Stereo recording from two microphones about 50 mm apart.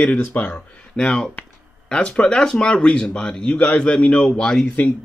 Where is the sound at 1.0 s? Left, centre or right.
Left.